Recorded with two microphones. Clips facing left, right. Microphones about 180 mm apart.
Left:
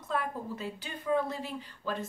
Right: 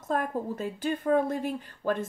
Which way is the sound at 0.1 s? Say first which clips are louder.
Right 5 dB; 45° right (ahead or behind).